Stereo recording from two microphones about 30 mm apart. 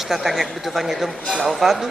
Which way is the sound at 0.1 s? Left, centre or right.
Centre.